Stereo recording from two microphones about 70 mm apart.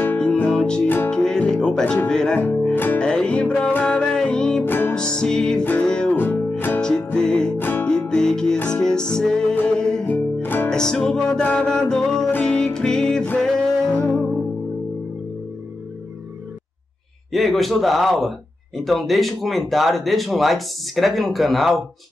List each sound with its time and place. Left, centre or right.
0.2 s music: centre
0.8 s music: left
1.1 s music: centre
2.7 s music: left
3.0 s music: centre
4.6 s music: left
4.9 s music: centre
6.1 s music: left
6.8 s music: centre
7.5 s music: left
8.1 s music: centre
10.0 s music: left
10.7 s music: centre
17.3 s speech: centre